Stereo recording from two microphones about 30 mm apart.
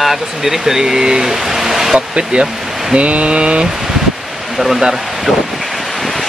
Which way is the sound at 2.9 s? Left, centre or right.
Right.